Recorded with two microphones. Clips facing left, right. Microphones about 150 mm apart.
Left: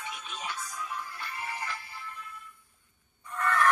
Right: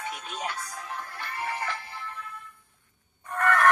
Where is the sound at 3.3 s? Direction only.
70° right (ahead or behind).